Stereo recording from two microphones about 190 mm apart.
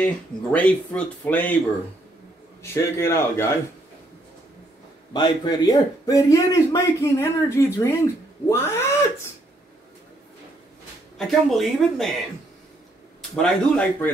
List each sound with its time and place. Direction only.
0.0 s a man's voice: 5° left (ahead or behind)
2.6 s a man's voice: 15° left (ahead or behind)
5.1 s a man's voice: 20° left (ahead or behind)
11.1 s speech: centre (ahead or behind)
13.4 s speech: 5° left (ahead or behind)